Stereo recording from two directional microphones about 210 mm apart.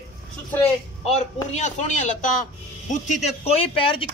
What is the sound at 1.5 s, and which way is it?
Speech, 35° left (ahead or behind).